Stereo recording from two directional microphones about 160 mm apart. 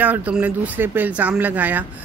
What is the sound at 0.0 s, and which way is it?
Speech, 10° right (ahead or behind).